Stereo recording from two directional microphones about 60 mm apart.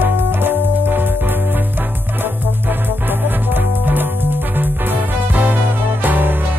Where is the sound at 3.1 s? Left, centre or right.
Right.